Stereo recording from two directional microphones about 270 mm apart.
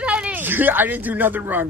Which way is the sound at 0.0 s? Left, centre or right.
Centre.